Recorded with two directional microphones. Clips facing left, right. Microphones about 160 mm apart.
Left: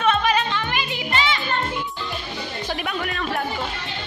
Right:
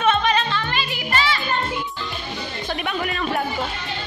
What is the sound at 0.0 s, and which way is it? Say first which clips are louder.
Music: right 1 dB; 5° left (ahead or behind).